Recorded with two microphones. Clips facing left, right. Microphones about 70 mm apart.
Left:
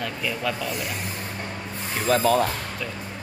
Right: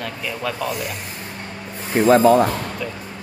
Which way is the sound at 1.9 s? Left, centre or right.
Right.